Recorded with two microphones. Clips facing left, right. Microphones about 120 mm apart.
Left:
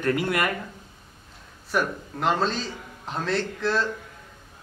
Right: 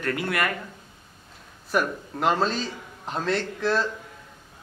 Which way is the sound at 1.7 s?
Centre (ahead or behind).